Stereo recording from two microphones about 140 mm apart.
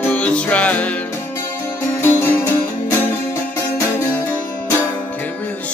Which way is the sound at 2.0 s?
15° left (ahead or behind).